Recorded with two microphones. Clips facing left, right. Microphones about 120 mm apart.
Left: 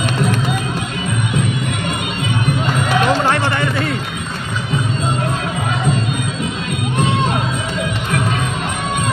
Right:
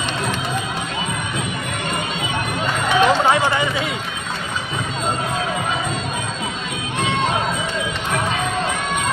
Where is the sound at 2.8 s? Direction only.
Centre (ahead or behind).